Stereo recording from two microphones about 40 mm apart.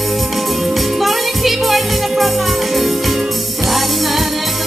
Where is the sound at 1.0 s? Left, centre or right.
Centre.